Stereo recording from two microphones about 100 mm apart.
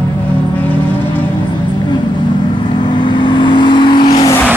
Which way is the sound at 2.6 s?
50° left (ahead or behind).